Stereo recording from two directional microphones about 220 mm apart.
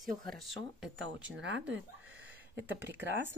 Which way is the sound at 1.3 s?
55° right (ahead or behind).